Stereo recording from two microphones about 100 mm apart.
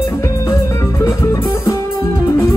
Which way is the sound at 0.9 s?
30° left (ahead or behind).